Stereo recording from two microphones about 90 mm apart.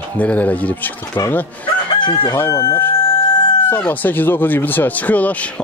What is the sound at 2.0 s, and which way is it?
Crowing, 60° left (ahead or behind).